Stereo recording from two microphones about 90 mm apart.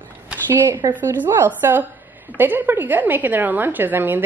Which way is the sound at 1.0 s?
25° right (ahead or behind).